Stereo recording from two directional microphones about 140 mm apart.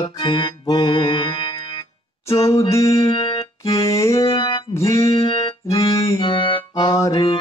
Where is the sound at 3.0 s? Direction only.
40° left (ahead or behind).